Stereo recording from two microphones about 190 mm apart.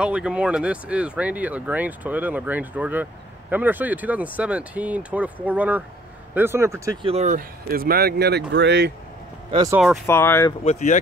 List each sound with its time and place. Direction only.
0.0 s speech: 5° right (ahead or behind)
7.0 s speech: 30° right (ahead or behind); by 8.9 s 60° right (ahead or behind)
9.5 s speech: 20° right (ahead or behind)
10.0 s speech: 10° left (ahead or behind)
10.6 s speech: 35° left (ahead or behind)